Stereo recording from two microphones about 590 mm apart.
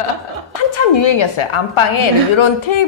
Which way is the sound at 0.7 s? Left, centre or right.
Left.